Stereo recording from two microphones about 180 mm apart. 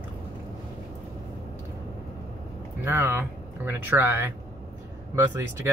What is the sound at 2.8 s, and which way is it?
Speech, 10° right (ahead or behind).